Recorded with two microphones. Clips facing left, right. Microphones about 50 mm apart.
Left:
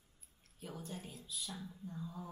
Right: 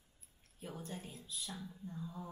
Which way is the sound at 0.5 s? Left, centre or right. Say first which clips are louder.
Right 1 dB; centre.